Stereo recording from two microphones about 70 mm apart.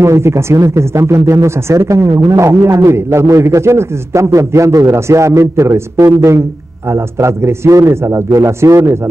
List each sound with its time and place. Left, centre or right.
0.0 s a man's voice: right